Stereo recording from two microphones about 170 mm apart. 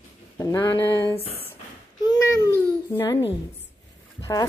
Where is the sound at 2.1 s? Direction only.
20° left (ahead or behind).